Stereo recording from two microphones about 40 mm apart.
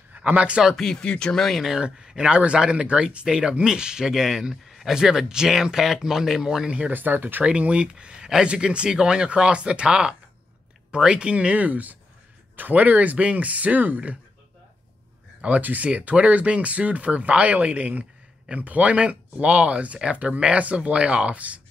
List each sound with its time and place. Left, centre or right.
0.1 s speech: right
0.7 s speech: centre
1.0 s speech: left
1.8 s speech: right
3.3 s speech: centre
4.6 s a sound: centre
4.9 s speech: centre
6.9 s speech: right
7.4 s speech: right
15.4 s speech: right